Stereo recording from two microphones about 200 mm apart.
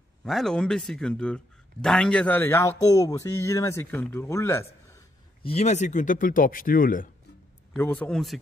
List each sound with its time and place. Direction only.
0.2 s speech: centre (ahead or behind)
5.4 s speech: 30° left (ahead or behind)
7.7 s speech: 10° left (ahead or behind)